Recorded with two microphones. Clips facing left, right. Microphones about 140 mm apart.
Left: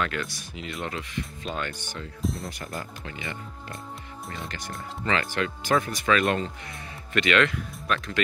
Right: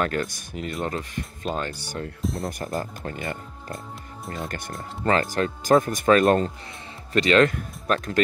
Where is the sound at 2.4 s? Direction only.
45° right (ahead or behind).